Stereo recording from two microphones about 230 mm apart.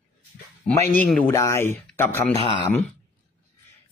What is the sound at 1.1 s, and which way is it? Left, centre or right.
A man's voice, centre.